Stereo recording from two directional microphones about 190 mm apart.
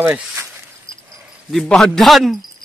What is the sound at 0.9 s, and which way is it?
Dog, 25° left (ahead or behind).